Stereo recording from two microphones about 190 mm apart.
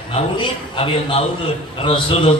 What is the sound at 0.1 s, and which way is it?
A man's voice, 30° left (ahead or behind).